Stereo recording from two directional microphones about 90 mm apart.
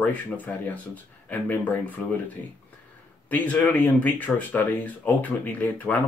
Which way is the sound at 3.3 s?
15° left (ahead or behind).